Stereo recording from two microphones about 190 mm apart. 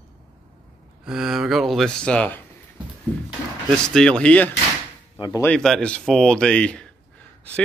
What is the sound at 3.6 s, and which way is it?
Speech, 5° left (ahead or behind).